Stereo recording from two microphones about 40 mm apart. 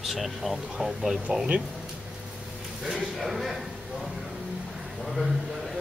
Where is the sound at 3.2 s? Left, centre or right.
Centre.